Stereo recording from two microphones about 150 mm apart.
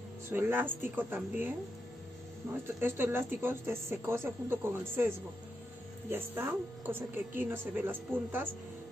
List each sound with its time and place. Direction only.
0.3 s speech: 15° right (ahead or behind)
2.8 s speech: 15° right (ahead or behind)